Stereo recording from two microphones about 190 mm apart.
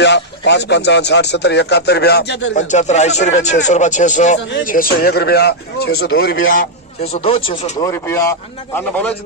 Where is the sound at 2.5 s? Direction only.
40° left (ahead or behind).